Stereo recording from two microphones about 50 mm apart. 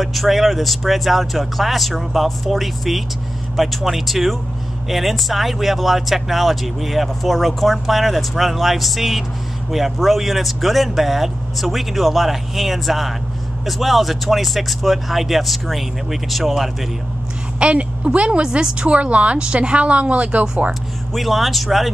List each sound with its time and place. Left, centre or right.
0.0 s speech: centre
17.6 s a woman's voice: right
21.1 s speech: centre